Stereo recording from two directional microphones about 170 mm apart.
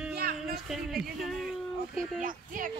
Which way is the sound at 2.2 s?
50° right (ahead or behind).